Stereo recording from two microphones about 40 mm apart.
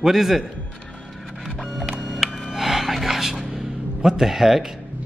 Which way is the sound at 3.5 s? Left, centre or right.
Centre.